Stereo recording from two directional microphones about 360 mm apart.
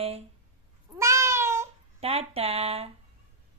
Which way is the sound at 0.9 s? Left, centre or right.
Centre.